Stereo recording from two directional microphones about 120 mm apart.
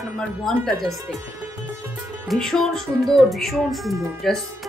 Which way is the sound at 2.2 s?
Centre (ahead or behind).